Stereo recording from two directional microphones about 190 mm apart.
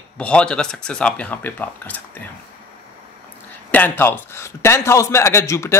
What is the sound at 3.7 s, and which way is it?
Speech, 10° left (ahead or behind).